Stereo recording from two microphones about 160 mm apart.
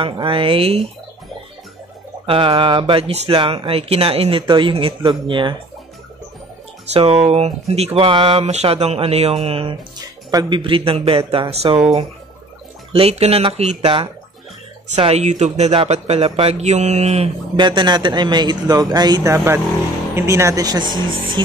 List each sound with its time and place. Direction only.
0.0 s speech: 35° right (ahead or behind)
2.2 s speech: 35° right (ahead or behind)
6.9 s speech: 35° right (ahead or behind)
17.6 s a man's voice: 30° right (ahead or behind)